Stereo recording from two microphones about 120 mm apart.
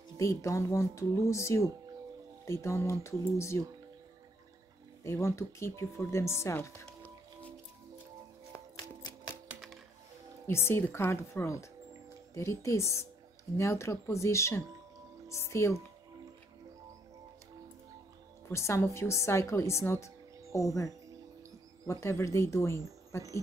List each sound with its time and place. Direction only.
0.2 s speech: 25° left (ahead or behind)
5.0 s speech: 25° left (ahead or behind)
9.3 s music: 35° left (ahead or behind)
10.4 s speech: 20° left (ahead or behind)
18.5 s speech: 25° left (ahead or behind)
22.0 s speech: 25° left (ahead or behind)